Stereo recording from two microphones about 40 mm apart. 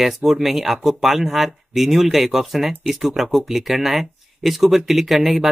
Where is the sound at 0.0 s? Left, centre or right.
Centre.